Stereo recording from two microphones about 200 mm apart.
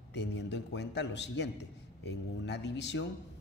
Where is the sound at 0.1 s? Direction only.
60° left (ahead or behind).